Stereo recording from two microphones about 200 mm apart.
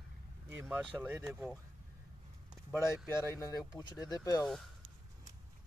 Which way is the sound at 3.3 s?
15° left (ahead or behind).